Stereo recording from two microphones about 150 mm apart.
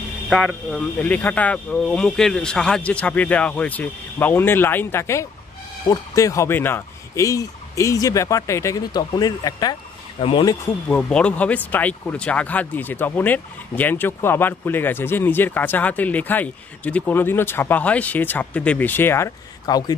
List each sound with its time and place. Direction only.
0.7 s speech: 10° left (ahead or behind); by 10.3 s 35° left (ahead or behind)
10.9 s speech: 5° left (ahead or behind); by 20.0 s 25° left (ahead or behind)